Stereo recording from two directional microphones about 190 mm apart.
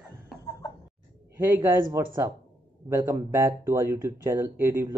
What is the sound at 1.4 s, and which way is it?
Speech, 10° right (ahead or behind).